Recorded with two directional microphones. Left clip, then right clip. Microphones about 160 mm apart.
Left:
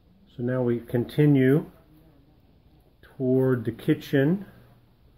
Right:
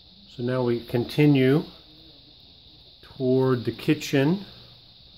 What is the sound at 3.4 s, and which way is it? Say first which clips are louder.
Speech: right 1 dB; 5° right (ahead or behind).